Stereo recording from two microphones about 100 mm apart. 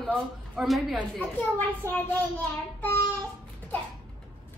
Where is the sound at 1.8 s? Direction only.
30° right (ahead or behind).